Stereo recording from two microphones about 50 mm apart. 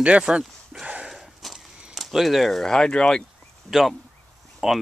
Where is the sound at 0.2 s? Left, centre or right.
Centre.